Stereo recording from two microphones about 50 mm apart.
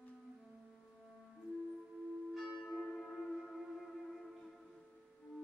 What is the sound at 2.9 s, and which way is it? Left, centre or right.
Music, centre.